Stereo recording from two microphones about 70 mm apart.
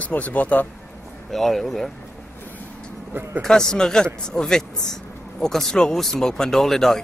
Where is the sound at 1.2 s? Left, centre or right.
Centre.